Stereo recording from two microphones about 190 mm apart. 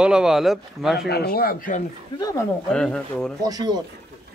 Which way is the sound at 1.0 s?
60° left (ahead or behind).